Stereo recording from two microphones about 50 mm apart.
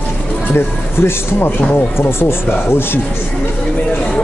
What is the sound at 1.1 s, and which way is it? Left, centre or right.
Speech, left.